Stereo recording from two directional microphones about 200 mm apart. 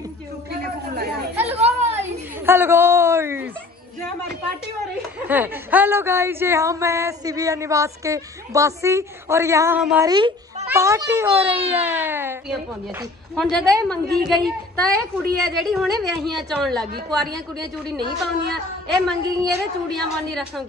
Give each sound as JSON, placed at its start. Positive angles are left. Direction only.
{"t": 1.4, "sound": "children playing", "side_deg": -30}
{"t": 2.0, "sound": "a sound", "side_deg": -10}
{"t": 5.2, "sound": "a woman's voice", "side_deg": -10}
{"t": 10.0, "sound": "a child's voice", "side_deg": -20}
{"t": 13.3, "sound": "a woman's voice", "side_deg": 5}